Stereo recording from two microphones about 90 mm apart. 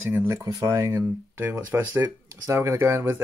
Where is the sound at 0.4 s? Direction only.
30° right (ahead or behind).